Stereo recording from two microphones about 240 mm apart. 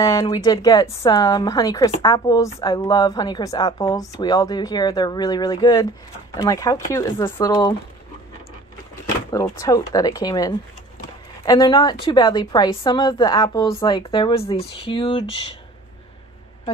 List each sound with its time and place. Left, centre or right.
0.0 s speech: centre
9.3 s a woman's voice: centre